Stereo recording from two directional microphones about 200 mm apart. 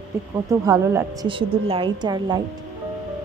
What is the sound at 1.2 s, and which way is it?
A woman's voice, 25° right (ahead or behind).